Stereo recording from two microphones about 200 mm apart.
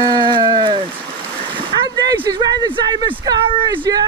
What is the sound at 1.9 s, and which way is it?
Speech, 20° right (ahead or behind).